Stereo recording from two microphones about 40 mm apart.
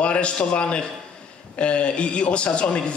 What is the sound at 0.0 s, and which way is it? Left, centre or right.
A man's voice, left.